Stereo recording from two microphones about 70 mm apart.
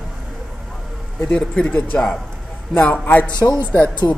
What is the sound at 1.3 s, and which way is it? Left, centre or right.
Speech, centre.